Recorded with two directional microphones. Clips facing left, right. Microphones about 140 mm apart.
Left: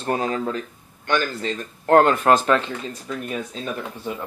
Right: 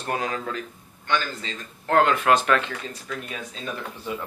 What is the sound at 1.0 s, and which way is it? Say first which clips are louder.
Speech: left 4 dB; 50° left (ahead or behind).